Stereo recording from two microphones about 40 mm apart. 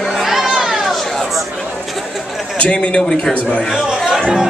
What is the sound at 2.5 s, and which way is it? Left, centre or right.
A man's voice, left.